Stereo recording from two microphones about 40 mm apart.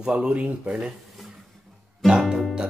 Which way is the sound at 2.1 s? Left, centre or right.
Centre.